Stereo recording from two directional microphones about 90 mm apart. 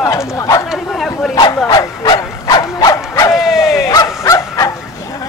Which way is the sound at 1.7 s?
50° left (ahead or behind).